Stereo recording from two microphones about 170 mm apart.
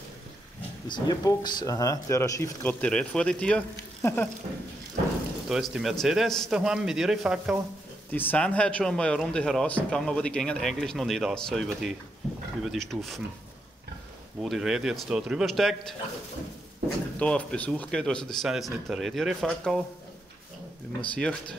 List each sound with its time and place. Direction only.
0.8 s speech: 25° left (ahead or behind)
5.5 s speech: centre (ahead or behind)
8.1 s speech: 10° left (ahead or behind)
14.4 s speech: centre (ahead or behind)
17.2 s speech: 5° left (ahead or behind)
21.0 s speech: 5° left (ahead or behind)